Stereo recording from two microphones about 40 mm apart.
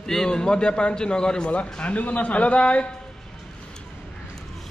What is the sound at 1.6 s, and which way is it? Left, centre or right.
A man's voice, left.